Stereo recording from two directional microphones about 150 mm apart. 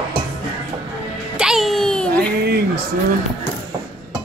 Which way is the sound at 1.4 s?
Centre (ahead or behind).